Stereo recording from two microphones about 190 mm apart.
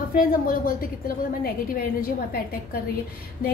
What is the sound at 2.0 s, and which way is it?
Speech, 50° left (ahead or behind).